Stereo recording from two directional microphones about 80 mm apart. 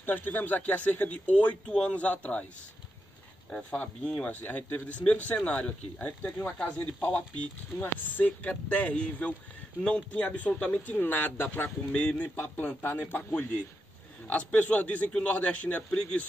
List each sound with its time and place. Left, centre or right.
0.0 s speech: left
3.4 s speech: centre